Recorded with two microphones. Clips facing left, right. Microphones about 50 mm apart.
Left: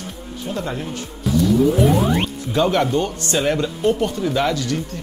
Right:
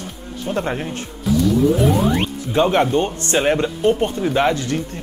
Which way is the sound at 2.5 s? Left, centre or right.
Right.